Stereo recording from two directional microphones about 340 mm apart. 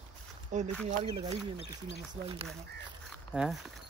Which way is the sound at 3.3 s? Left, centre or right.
Centre.